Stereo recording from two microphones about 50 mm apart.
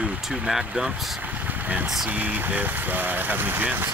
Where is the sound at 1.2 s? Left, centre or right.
Right.